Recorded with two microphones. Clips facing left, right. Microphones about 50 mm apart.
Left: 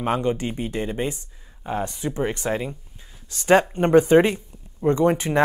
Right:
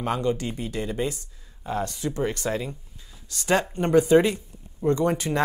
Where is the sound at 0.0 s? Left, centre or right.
Left.